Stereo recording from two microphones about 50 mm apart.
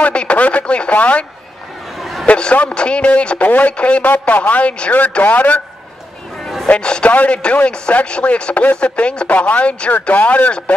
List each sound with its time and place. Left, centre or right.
0.0 s speech: left
2.0 s a sound: centre
2.2 s speech: left
4.0 s speech: left
5.2 s a man's voice: left
6.8 s speech: centre
7.1 s speech: left